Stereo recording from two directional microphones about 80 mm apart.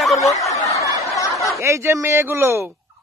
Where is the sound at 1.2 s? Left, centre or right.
Left.